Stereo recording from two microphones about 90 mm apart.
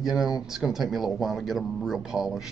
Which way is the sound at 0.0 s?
5° right (ahead or behind).